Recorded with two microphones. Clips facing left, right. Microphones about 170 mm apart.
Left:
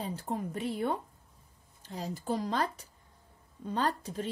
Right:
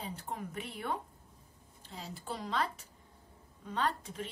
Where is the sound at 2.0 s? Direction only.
40° left (ahead or behind).